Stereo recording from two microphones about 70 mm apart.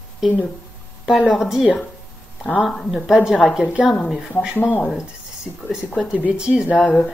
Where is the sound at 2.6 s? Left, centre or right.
Centre.